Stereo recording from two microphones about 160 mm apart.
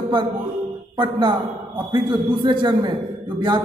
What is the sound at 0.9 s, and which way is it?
A man's voice, 30° right (ahead or behind).